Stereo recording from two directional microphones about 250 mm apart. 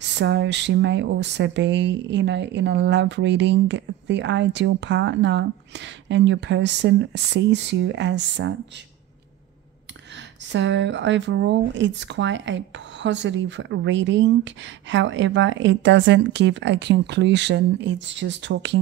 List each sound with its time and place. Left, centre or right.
0.0 s speech: right
10.5 s speech: right